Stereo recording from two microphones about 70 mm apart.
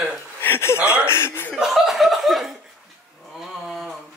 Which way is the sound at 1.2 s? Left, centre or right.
Left.